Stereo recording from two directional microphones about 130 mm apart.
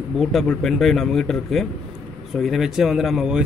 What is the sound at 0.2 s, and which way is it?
Speech, centre (ahead or behind).